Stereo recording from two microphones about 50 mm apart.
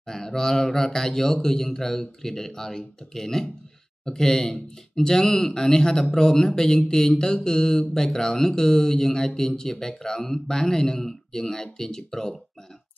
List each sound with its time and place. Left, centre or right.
0.0 s speech: centre